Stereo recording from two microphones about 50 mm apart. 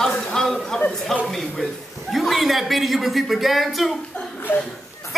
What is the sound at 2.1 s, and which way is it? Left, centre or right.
Speech, centre.